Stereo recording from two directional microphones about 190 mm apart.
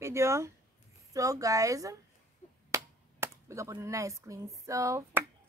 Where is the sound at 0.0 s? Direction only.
15° right (ahead or behind).